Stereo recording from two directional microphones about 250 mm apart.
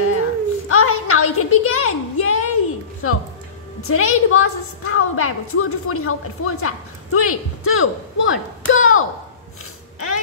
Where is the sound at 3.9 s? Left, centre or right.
Left.